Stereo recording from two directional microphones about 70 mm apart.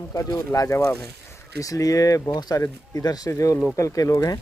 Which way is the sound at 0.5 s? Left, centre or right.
Left.